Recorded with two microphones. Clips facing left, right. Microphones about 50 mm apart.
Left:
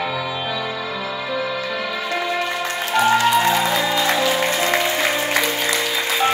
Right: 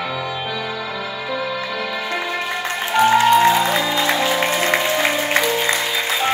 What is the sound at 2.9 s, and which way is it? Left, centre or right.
Music, centre.